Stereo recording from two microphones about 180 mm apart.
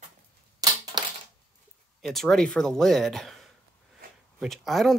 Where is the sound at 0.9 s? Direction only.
25° right (ahead or behind).